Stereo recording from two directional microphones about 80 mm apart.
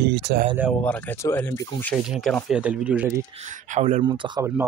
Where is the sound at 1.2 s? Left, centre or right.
Left.